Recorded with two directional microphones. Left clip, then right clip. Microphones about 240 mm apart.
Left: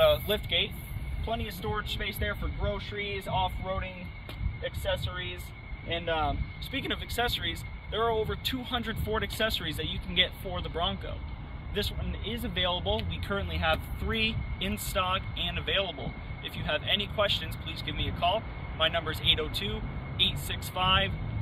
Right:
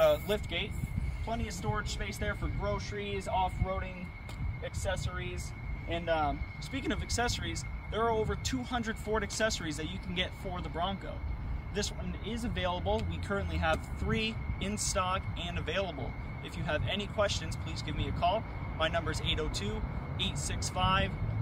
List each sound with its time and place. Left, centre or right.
0.0 s vehicle: centre
1.2 s speech: centre
4.8 s speech: centre
12.3 s speech: centre
20.3 s speech: centre
20.7 s speech: centre